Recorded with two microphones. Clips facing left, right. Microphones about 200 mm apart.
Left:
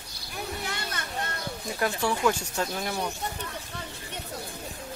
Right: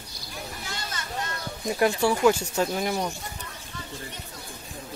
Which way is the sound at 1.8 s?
10° right (ahead or behind).